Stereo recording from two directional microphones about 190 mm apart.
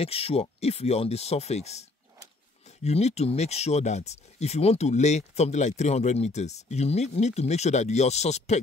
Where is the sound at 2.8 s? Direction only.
35° left (ahead or behind).